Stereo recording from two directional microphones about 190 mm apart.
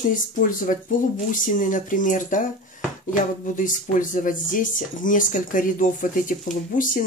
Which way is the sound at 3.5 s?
45° left (ahead or behind).